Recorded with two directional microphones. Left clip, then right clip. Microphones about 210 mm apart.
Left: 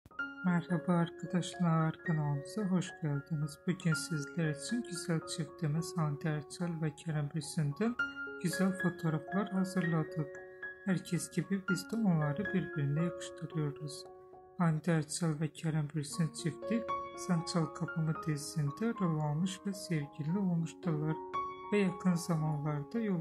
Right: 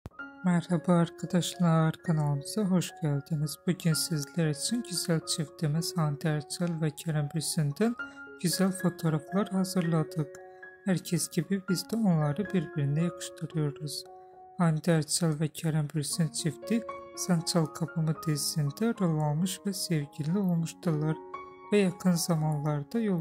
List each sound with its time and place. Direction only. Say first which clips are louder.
0.4 s speech: right 8 dB; 30° right (ahead or behind)